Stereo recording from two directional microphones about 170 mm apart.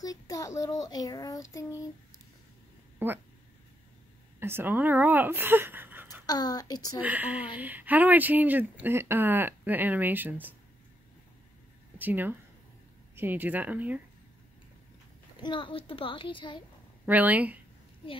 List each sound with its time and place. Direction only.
0.0 s a woman's voice: 20° left (ahead or behind)
3.0 s speech: 10° right (ahead or behind)
4.4 s speech: 15° right (ahead or behind)
6.2 s a woman's voice: 25° left (ahead or behind)
7.0 s speech: 10° right (ahead or behind)
12.0 s speech: 10° right (ahead or behind)
15.4 s a woman's voice: 30° left (ahead or behind)
17.0 s speech: 10° right (ahead or behind)